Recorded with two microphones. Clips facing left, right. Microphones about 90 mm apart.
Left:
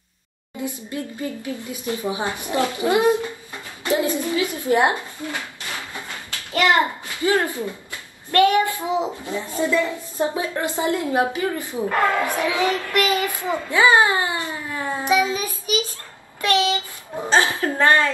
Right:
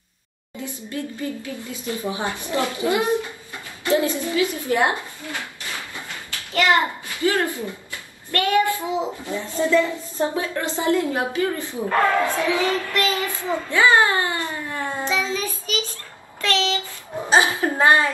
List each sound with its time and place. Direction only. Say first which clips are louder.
0.8 s a child's voice: even; 20° left (ahead or behind)
3.8 s a sound: right 1 dB; 20° left (ahead or behind)
6.6 s a child's voice: left 1 dB; 20° left (ahead or behind)
14.7 s child singing: left 6 dB; 10° left (ahead or behind)
16.3 s a sound: left 3 dB; 15° left (ahead or behind)
17.3 s a woman's voice: right 1 dB; 15° right (ahead or behind)